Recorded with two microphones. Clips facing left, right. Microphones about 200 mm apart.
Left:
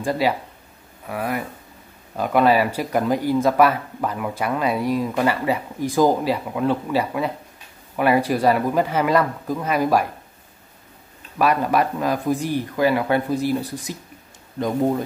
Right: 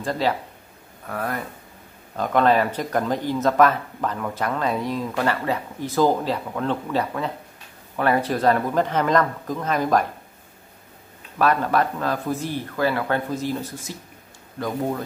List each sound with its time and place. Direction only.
0.0 s speech: 10° left (ahead or behind)
11.3 s speech: 10° left (ahead or behind)